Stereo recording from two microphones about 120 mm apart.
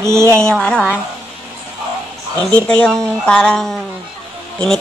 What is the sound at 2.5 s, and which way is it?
A woman's voice, 10° left (ahead or behind).